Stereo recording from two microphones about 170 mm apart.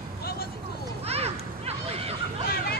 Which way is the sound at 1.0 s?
35° right (ahead or behind).